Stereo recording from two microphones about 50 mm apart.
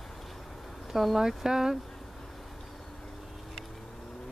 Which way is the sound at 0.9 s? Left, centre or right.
Centre.